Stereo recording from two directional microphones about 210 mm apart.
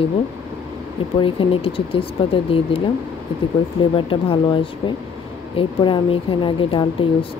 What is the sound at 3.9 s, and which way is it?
Speech, 25° left (ahead or behind).